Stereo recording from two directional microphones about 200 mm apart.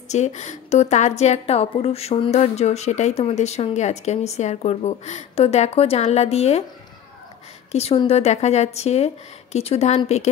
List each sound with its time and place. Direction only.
0.1 s a woman's voice: 35° left (ahead or behind)
7.7 s a woman's voice: 30° left (ahead or behind)